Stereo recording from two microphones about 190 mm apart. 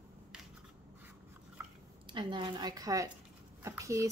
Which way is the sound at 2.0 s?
25° right (ahead or behind).